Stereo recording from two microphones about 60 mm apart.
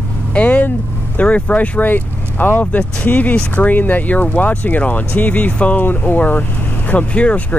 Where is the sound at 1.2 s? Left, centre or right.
Left.